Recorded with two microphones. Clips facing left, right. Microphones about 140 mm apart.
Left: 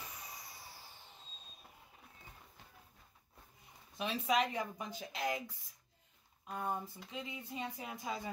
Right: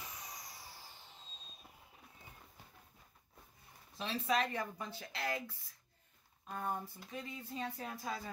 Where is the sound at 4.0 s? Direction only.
15° left (ahead or behind).